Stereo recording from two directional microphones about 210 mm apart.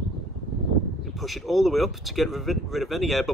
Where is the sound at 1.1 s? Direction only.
Centre (ahead or behind).